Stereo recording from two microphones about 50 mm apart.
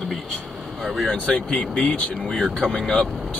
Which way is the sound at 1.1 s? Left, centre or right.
Left.